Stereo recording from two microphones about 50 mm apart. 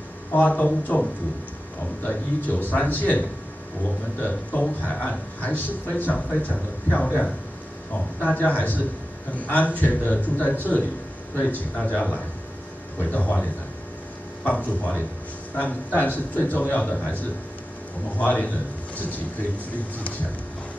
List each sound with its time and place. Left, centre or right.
0.3 s a man's voice: left
2.0 s a man's voice: left
4.2 s a man's voice: left
13.0 s a man's voice: left
16.8 s a man's voice: centre
18.1 s a man's voice: left